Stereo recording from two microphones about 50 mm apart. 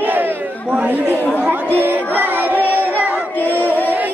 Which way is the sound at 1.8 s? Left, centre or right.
Right.